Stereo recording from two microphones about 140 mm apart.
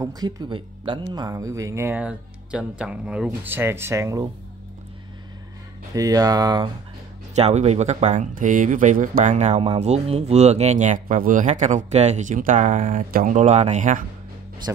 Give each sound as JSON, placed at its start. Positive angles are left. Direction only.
{"t": 0.0, "sound": "speech", "side_deg": -30}
{"t": 5.9, "sound": "speech", "side_deg": -25}
{"t": 7.3, "sound": "speech", "side_deg": -50}
{"t": 13.4, "sound": "speech", "side_deg": -50}